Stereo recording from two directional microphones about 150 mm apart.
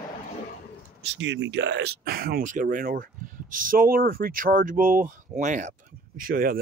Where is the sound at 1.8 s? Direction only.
90° right; by 5.7 s 55° right (ahead or behind).